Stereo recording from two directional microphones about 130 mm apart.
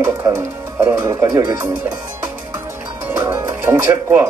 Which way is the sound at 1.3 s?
25° right (ahead or behind).